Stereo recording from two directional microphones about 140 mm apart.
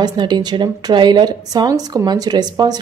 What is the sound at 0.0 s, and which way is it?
A woman's voice, 30° right (ahead or behind).